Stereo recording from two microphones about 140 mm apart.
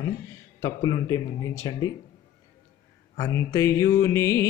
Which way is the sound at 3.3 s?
20° left (ahead or behind).